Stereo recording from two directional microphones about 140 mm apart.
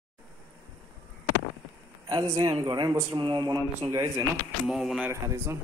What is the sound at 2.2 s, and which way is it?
Speech, 25° right (ahead or behind).